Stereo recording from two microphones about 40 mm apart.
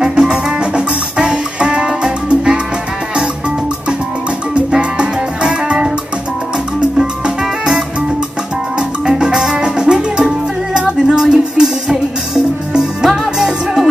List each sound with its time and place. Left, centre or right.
0.0 s music: centre
4.6 s music: right